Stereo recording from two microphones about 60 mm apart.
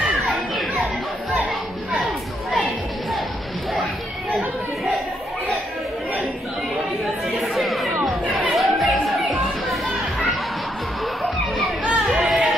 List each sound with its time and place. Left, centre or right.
2.5 s music: centre
7.5 s chatter: centre
11.8 s chatter: right
12.2 s a sound: centre